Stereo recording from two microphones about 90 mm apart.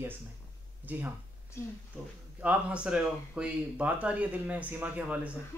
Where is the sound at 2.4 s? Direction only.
10° right (ahead or behind).